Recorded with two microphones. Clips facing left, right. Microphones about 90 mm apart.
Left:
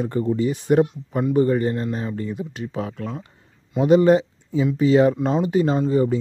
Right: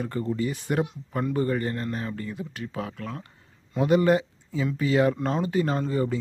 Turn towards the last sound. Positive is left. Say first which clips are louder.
# left 7 dB
turn(degrees=20)  # may be behind; listen again after turning